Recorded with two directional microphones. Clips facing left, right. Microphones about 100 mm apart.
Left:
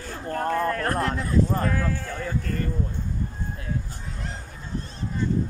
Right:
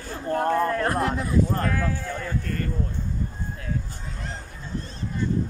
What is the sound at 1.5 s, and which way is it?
Speech, 5° left (ahead or behind).